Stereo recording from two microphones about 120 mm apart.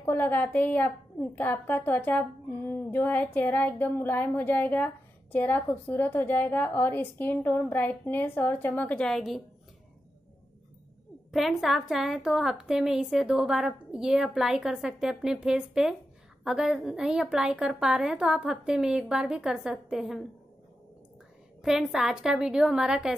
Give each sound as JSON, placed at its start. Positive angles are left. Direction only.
{"t": 0.0, "sound": "a woman's voice", "side_deg": 15}
{"t": 11.3, "sound": "a woman's voice", "side_deg": 0}
{"t": 21.5, "sound": "a woman's voice", "side_deg": -5}